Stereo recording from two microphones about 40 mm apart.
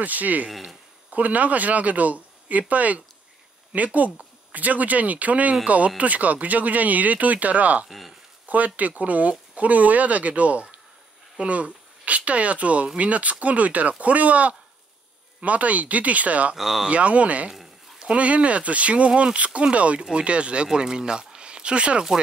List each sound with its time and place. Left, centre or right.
0.0 s speech: right
0.5 s speech: centre
1.1 s speech: right
16.5 s speech: centre
16.9 s speech: right